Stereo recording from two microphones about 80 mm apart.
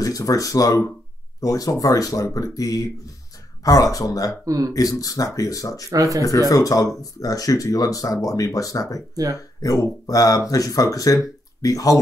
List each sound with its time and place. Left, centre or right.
0.0 s speech: left
4.5 s speech: right
4.7 s speech: left
5.9 s speech: right
6.5 s speech: left
9.1 s speech: right
9.6 s speech: left